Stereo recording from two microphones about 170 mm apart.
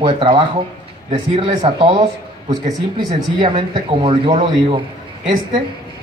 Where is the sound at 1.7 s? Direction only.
35° right (ahead or behind).